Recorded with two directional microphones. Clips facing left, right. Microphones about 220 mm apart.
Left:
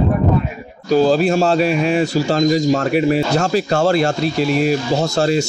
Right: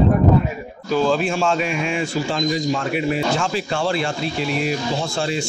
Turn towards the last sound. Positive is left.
turn(degrees=40)  # may be behind; listen again after turning